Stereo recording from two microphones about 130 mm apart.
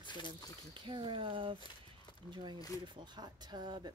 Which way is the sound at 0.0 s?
35° left (ahead or behind).